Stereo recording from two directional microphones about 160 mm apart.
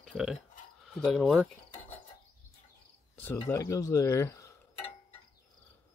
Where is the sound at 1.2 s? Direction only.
5° right (ahead or behind).